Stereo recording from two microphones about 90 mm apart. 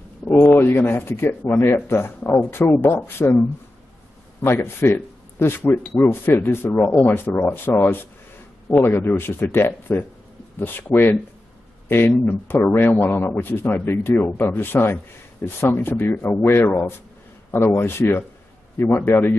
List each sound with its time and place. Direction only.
0.3 s a sound: 15° left (ahead or behind)
0.6 s speech: 25° left (ahead or behind)
4.5 s speech: 25° left (ahead or behind)